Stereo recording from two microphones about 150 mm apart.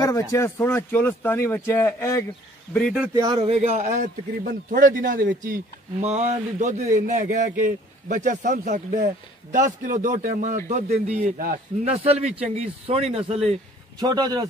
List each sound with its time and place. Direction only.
0.0 s speech: 20° left (ahead or behind)
2.7 s speech: 5° left (ahead or behind)
3.4 s a man's voice: 45° right (ahead or behind); by 6.0 s 65° right (ahead or behind)
6.0 s a man's voice: 50° right (ahead or behind)
7.0 s a man's voice: 65° right (ahead or behind)
11.1 s a man's voice: 45° right (ahead or behind)
11.3 s a man's voice: 75° right (ahead or behind)
11.8 s a man's voice: 45° right (ahead or behind)
13.9 s speech: 25° right (ahead or behind)